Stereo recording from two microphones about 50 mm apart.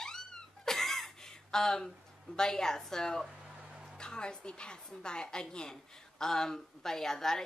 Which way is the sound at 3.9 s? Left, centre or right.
Centre.